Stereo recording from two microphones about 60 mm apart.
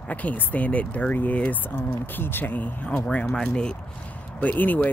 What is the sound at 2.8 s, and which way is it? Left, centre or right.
Speech, centre.